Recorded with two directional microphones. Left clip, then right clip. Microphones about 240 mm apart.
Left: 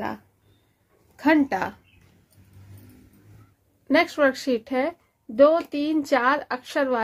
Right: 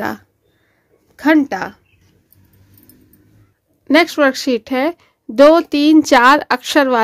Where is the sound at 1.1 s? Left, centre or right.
Right.